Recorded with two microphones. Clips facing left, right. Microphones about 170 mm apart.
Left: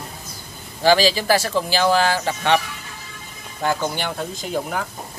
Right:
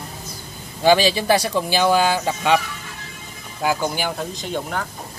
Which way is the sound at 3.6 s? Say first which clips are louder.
Right 1 dB; 5° right (ahead or behind).